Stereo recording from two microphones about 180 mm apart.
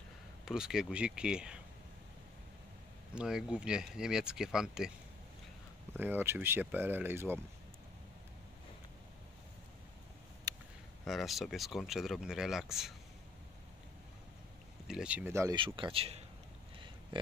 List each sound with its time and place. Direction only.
0.5 s speech: 5° right (ahead or behind)
3.2 s speech: 5° right (ahead or behind)
5.9 s speech: 10° right (ahead or behind)
10.5 s a sound: 20° right (ahead or behind)
11.1 s speech: centre (ahead or behind)
14.9 s speech: 5° right (ahead or behind)
15.5 s speech: 30° right (ahead or behind)
17.1 s a sound: 30° right (ahead or behind)